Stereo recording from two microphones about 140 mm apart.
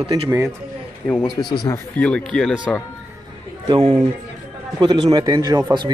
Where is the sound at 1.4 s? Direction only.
25° left (ahead or behind).